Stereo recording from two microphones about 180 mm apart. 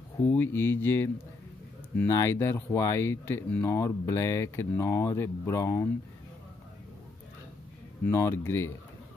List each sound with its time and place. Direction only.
0.2 s speech: 10° left (ahead or behind)
8.1 s speech: 15° left (ahead or behind)